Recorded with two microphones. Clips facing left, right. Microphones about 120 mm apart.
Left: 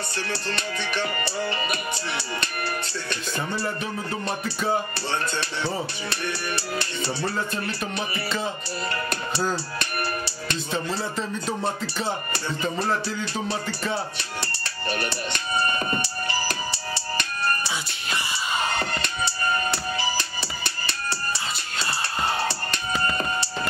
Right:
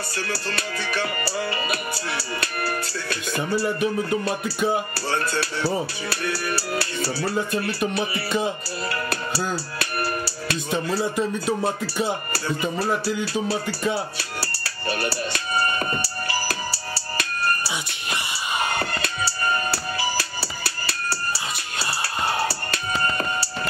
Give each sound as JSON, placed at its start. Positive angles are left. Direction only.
{"t": 1.7, "sound": "speech", "side_deg": -5}
{"t": 4.9, "sound": "speech", "side_deg": 20}
{"t": 5.4, "sound": "speech", "side_deg": -5}
{"t": 9.1, "sound": "speech", "side_deg": -5}
{"t": 16.7, "sound": "music", "side_deg": -5}
{"t": 18.8, "sound": "music", "side_deg": -5}